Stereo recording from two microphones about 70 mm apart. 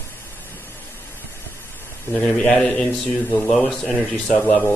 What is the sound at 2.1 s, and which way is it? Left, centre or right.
A man's voice, centre.